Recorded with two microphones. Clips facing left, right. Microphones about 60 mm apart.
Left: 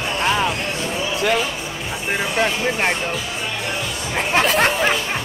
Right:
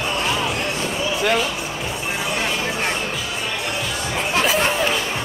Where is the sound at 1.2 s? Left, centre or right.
Centre.